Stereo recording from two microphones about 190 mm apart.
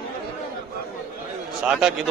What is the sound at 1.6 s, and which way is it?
Speech, 5° right (ahead or behind).